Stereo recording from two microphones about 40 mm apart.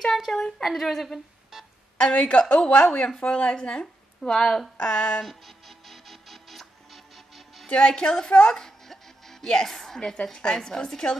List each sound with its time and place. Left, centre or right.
0.3 s a woman's voice: centre
2.0 s a woman's voice: left
4.2 s a woman's voice: centre
4.7 s a woman's voice: left
5.2 s music: centre
7.7 s a woman's voice: centre